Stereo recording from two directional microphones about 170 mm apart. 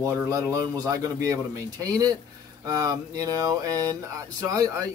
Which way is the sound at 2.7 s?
20° right (ahead or behind).